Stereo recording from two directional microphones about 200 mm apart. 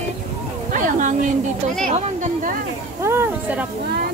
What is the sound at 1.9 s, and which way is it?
Speech, 40° right (ahead or behind).